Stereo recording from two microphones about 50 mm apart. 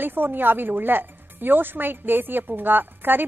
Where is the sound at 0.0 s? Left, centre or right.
Right.